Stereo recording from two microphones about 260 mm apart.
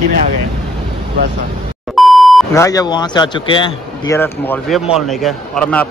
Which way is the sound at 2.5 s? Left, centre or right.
Centre.